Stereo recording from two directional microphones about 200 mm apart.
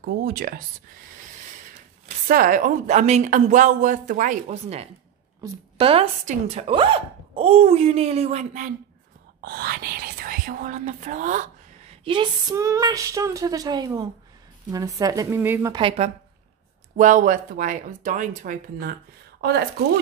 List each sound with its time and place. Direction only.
0.0 s speech: 45° right (ahead or behind)
2.2 s a woman's voice: 45° right (ahead or behind)
9.4 s speech: 50° right (ahead or behind)
12.0 s speech: 25° right (ahead or behind)
15.7 s a woman's voice: 25° right (ahead or behind)
16.9 s a woman's voice: 40° right (ahead or behind)